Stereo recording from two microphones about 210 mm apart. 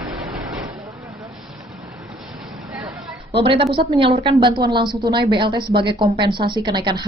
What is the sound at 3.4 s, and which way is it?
A woman's voice, 25° right (ahead or behind).